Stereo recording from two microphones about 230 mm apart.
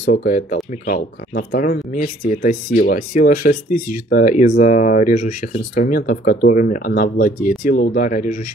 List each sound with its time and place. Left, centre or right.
0.0 s speech: left